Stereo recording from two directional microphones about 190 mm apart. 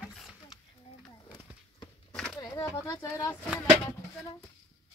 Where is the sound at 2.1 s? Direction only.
5° left (ahead or behind).